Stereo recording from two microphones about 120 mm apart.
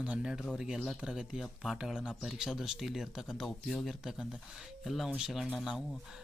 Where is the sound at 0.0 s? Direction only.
10° right (ahead or behind).